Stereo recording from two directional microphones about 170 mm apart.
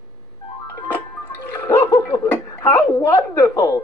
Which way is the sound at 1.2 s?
10° left (ahead or behind).